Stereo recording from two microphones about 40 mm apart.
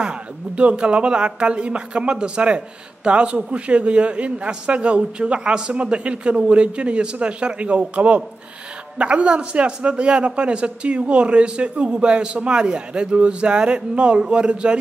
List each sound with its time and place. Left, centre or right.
0.0 s a woman's voice: right